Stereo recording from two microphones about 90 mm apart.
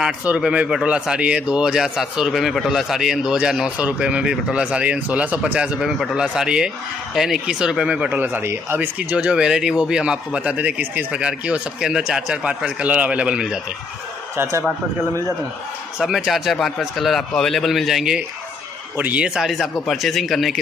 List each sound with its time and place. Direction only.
0.4 s a man's voice: 10° right (ahead or behind)
8.2 s a man's voice: 25° right (ahead or behind)
14.3 s speech: 30° right (ahead or behind)
16.0 s speech: 5° right (ahead or behind)
18.9 s a man's voice: 20° right (ahead or behind)
19.2 s speech: 5° right (ahead or behind)